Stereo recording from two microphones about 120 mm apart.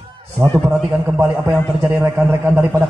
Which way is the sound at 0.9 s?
25° right (ahead or behind).